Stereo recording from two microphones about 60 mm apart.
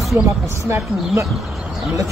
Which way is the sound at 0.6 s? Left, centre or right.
Right.